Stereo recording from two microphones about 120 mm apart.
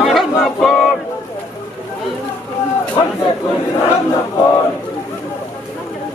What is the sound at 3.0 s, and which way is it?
Speech, 40° left (ahead or behind).